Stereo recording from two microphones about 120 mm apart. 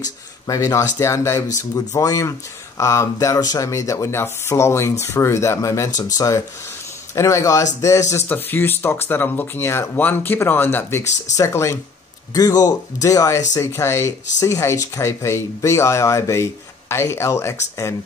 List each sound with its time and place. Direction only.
0.5 s speech: 30° left (ahead or behind)